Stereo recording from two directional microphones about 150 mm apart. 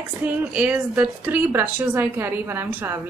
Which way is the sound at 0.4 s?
10° right (ahead or behind).